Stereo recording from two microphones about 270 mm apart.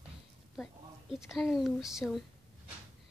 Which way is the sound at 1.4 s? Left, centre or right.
Centre.